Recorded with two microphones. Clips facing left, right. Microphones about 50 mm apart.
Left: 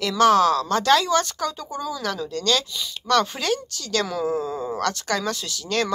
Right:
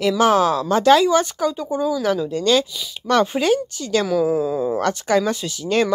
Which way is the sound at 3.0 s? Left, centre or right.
Centre.